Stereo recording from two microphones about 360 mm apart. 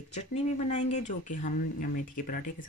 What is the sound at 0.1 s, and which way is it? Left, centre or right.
Speech, centre.